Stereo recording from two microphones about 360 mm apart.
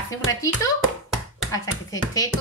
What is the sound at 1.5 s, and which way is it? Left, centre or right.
Speech, centre.